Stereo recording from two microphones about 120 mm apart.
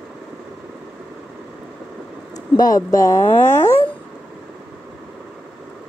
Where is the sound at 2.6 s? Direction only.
30° left (ahead or behind).